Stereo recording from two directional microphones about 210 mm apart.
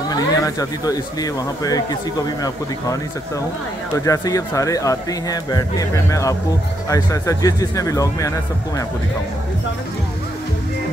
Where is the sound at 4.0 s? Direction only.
15° left (ahead or behind).